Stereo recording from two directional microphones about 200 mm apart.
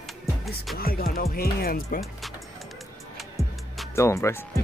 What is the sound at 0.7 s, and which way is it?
Speech, 50° left (ahead or behind).